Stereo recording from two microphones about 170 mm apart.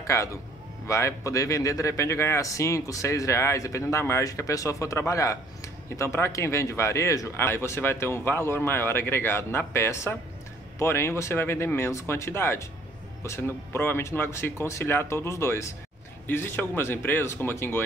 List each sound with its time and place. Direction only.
0.0 s a man's voice: 15° left (ahead or behind)